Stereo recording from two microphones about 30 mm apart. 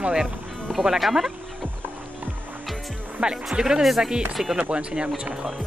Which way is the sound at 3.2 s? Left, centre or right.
Right.